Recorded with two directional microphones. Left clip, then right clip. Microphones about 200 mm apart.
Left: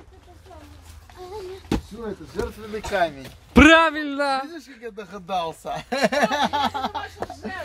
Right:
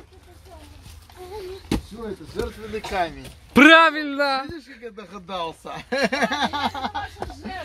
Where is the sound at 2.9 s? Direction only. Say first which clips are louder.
Left 3 dB; 40° left (ahead or behind).